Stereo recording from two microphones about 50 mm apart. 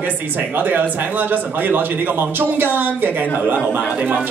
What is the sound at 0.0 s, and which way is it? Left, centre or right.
Speech, right.